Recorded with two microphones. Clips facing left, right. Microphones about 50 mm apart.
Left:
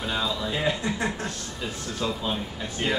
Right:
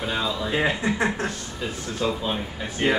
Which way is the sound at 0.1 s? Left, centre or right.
Centre.